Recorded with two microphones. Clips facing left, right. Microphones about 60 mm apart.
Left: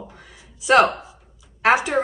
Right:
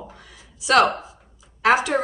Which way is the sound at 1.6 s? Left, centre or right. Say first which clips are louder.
Even; left.